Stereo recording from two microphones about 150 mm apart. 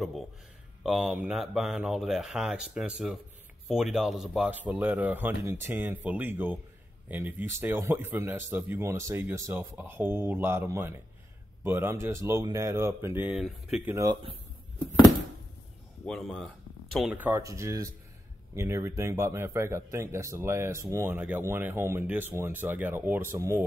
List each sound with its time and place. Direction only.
0.8 s a man's voice: 5° right (ahead or behind)
16.1 s speech: 5° left (ahead or behind)
17.1 s a man's voice: 10° right (ahead or behind)